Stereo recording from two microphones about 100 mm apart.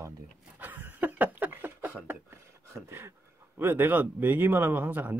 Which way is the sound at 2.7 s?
25° right (ahead or behind).